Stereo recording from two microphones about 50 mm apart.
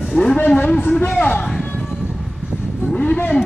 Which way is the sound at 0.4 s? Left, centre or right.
Left.